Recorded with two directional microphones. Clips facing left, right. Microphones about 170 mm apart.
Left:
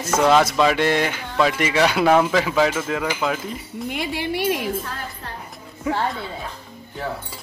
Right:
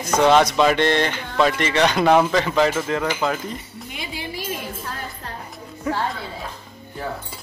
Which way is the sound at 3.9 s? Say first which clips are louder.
Left 7 dB; 65° left (ahead or behind).